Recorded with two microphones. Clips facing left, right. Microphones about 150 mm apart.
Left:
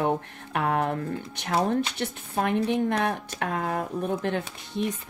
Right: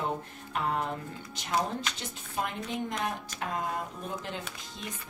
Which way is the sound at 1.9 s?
65° left (ahead or behind).